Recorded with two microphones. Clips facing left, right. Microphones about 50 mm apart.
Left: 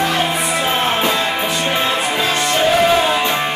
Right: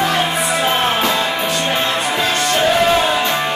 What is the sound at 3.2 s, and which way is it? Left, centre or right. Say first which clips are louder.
Music: even; left.